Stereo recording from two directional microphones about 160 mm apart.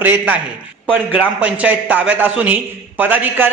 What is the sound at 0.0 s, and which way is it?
A man's voice, 10° right (ahead or behind).